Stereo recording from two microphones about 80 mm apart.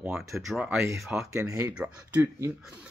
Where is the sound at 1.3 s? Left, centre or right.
Right.